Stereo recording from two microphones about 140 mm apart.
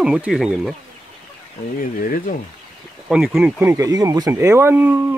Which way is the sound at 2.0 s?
80° left.